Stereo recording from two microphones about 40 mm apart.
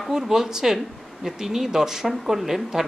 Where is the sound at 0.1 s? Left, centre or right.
Centre.